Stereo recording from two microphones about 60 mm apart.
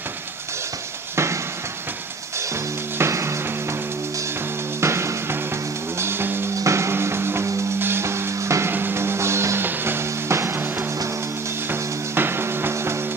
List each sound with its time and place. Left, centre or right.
1.1 s a sound: right
3.0 s music: right
4.7 s music: right
6.6 s music: right